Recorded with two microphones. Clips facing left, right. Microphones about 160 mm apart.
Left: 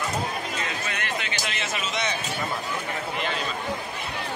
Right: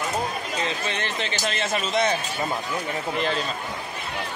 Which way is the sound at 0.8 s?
30° right (ahead or behind).